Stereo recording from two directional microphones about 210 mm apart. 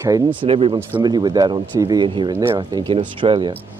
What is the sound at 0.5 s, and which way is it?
Speech, 25° right (ahead or behind).